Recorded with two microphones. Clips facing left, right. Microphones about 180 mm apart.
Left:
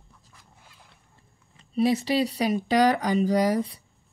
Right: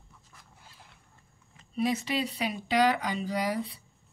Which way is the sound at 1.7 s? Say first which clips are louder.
Left 6 dB; 35° left (ahead or behind).